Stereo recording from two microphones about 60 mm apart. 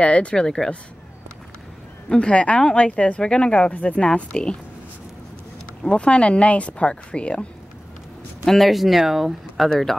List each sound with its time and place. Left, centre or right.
0.0 s speech: left
2.0 s speech: centre
4.1 s speech: centre
5.9 s speech: centre
8.5 s speech: centre
9.7 s speech: centre